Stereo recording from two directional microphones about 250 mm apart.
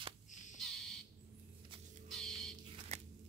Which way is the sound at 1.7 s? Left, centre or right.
Centre.